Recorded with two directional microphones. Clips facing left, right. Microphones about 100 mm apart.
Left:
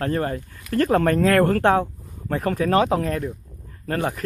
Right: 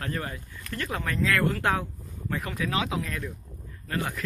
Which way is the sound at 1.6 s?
35° left (ahead or behind).